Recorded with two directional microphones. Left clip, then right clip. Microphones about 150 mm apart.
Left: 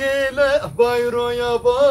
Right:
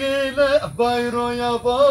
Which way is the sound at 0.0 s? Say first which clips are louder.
Left 1 dB; 40° left (ahead or behind).